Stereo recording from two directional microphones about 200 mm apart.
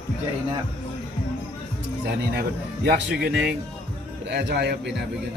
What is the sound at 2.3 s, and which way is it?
Speech, 55° right (ahead or behind).